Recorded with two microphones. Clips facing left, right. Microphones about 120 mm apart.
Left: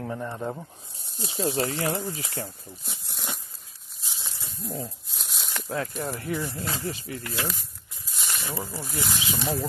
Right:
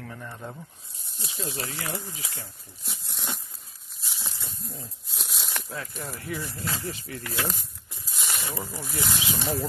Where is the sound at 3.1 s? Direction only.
Centre (ahead or behind).